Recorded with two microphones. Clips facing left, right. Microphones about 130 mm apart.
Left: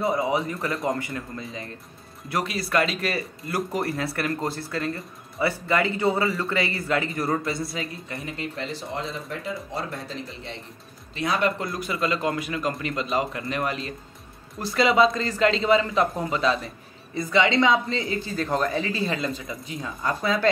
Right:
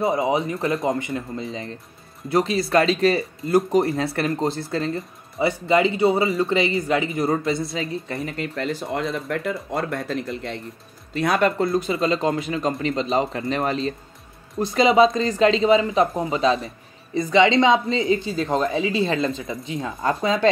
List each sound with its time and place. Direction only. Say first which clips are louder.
0.0 s speech: right 3 dB; 20° right (ahead or behind)
8.4 s speech: right 5 dB; 50° right (ahead or behind)
11.5 s speech: right 8 dB; 30° right (ahead or behind)